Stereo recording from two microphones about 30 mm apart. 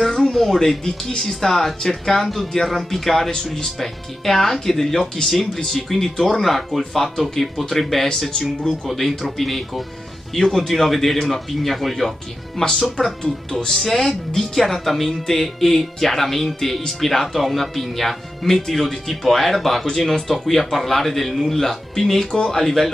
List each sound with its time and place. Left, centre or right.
0.0 s a sound: centre
0.6 s speech: centre
5.3 s speech: centre
8.8 s a man's voice: centre
12.6 s speech: centre
13.7 s a man's voice: centre